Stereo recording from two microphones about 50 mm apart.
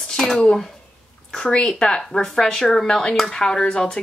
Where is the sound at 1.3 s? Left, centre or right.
Centre.